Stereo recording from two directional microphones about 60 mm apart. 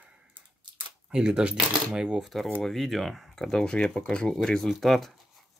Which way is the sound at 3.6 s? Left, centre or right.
Centre.